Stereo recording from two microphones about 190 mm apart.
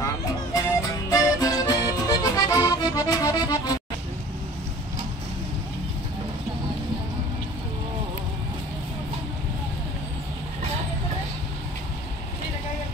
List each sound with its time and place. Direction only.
0.6 s music: 20° left (ahead or behind)